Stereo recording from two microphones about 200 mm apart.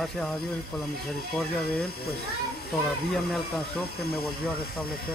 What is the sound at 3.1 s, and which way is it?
Speech, 5° left (ahead or behind).